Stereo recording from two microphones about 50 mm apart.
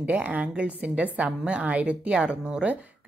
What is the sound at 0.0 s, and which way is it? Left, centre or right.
A woman's voice, right.